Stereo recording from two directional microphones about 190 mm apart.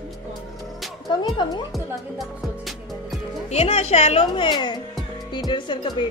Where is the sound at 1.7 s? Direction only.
Centre (ahead or behind).